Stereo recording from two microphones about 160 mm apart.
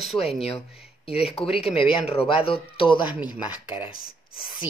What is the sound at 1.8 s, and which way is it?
Speech, 35° left (ahead or behind).